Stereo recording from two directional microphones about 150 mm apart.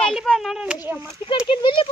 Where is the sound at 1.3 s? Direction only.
35° left (ahead or behind).